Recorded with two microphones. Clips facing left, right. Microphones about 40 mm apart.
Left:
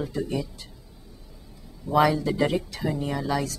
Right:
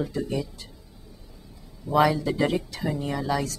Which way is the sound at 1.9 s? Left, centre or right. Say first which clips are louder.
Even; centre.